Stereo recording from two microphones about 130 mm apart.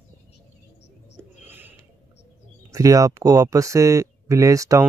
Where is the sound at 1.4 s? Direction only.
15° right (ahead or behind).